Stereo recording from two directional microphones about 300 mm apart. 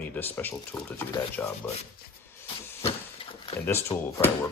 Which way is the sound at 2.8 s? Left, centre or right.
Centre.